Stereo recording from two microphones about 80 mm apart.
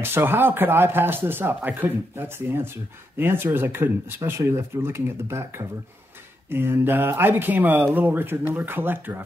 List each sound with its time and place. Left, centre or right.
0.0 s speech: right